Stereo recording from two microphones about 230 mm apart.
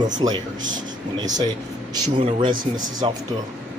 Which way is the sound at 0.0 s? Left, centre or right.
Centre.